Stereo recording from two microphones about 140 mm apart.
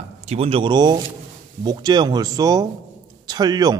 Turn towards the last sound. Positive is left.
turn(degrees=-30)  # may be behind; listen again after turning